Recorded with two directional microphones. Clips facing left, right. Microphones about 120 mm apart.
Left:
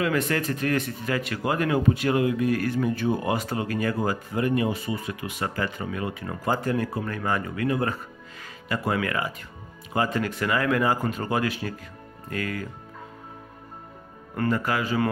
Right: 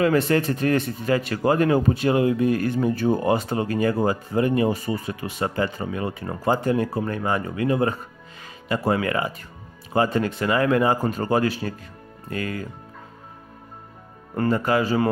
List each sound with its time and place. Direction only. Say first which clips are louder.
0.0 s speech: right 5 dB; 30° right (ahead or behind)
14.3 s speech: right 4 dB; 30° right (ahead or behind)